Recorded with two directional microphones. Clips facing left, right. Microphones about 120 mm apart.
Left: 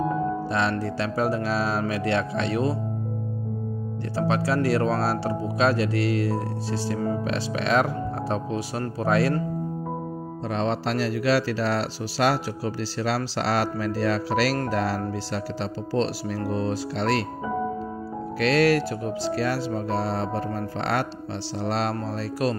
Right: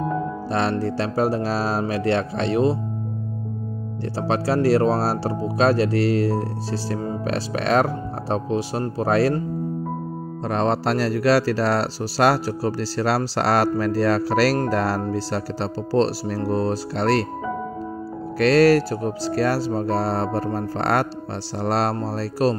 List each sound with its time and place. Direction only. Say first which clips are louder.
0.5 s speech: right 3 dB; 35° right (ahead or behind)
4.1 s speech: right 2 dB; 30° right (ahead or behind)
10.5 s speech: right 5 dB; 45° right (ahead or behind)
18.4 s speech: right 5 dB; 40° right (ahead or behind)